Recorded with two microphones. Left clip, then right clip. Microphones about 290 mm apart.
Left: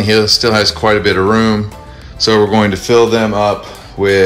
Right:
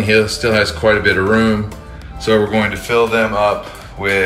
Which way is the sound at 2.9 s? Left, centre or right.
Left.